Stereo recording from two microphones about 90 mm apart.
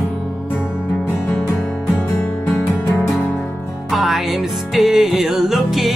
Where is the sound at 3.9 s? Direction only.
Centre (ahead or behind).